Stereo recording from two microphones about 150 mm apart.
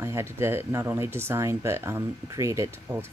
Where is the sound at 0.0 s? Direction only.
15° right (ahead or behind).